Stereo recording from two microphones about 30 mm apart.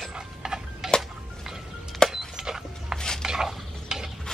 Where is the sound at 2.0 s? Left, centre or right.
Centre.